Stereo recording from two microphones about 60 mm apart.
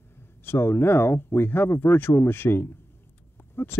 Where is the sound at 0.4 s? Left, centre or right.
Left.